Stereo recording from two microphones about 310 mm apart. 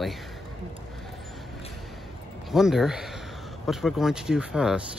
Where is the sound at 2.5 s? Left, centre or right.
Centre.